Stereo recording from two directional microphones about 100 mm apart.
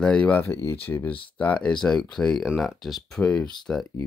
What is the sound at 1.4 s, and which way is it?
Speech, 10° left (ahead or behind).